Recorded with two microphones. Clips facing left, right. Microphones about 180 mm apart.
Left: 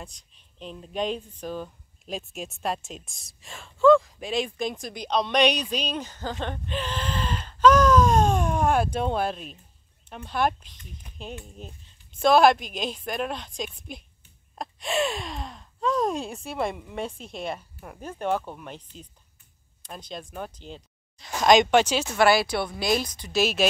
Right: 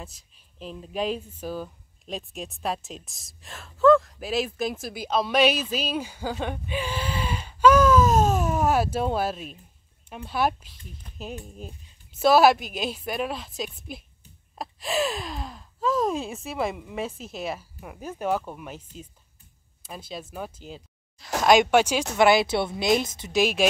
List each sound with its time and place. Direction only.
0.0 s speech: 5° right (ahead or behind)